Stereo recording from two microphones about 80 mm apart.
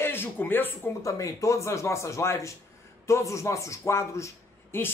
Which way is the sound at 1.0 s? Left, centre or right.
Left.